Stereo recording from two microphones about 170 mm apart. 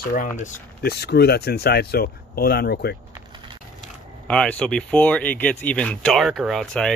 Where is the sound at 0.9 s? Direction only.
75° left (ahead or behind).